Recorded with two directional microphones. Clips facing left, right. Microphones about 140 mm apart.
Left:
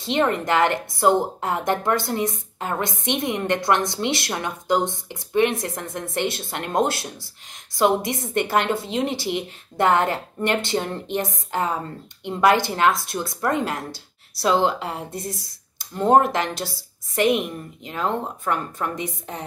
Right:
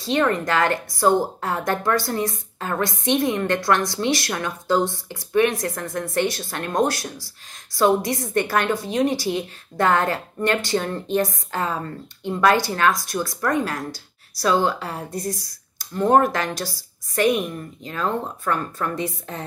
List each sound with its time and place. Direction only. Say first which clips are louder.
0.0 s a woman's voice: right 1 dB; 20° left (ahead or behind)